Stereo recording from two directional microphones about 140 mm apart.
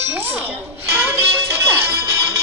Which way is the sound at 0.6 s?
15° right (ahead or behind).